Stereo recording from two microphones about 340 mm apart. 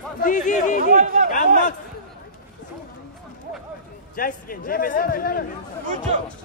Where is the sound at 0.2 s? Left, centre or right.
Left.